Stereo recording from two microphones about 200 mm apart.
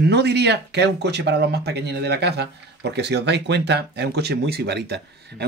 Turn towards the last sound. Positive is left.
turn(degrees=-55)  # may be behind; listen again after turning